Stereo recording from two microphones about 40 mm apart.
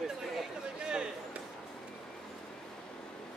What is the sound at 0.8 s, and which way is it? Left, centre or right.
Speech, right.